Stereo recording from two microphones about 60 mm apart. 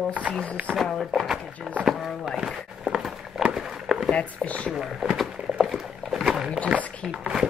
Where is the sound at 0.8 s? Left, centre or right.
Centre.